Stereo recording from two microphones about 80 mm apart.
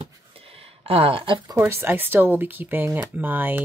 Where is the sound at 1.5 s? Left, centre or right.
Right.